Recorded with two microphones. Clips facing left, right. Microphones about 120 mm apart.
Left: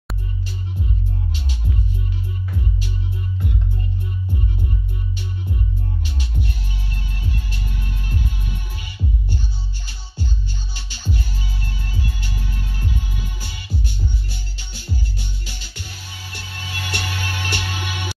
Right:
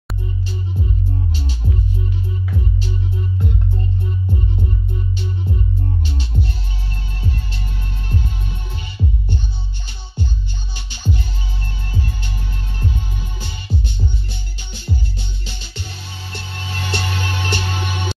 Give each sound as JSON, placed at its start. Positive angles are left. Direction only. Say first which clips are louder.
{"t": 6.0, "sound": "music", "louder": "right 4 dB", "side_deg": -30}
{"t": 10.7, "sound": "music", "louder": "right 5 dB", "side_deg": -20}